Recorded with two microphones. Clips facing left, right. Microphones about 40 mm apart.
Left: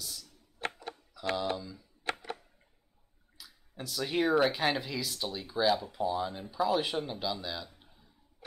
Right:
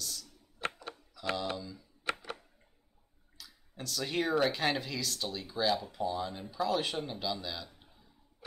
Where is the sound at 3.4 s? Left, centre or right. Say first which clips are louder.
Left 1 dB; centre.